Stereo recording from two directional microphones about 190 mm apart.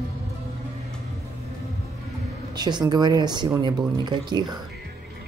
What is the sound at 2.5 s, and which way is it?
Speech, 20° right (ahead or behind).